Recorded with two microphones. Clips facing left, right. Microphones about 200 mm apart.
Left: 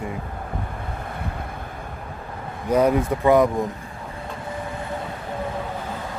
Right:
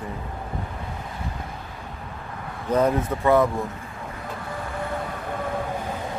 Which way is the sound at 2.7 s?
15° left (ahead or behind).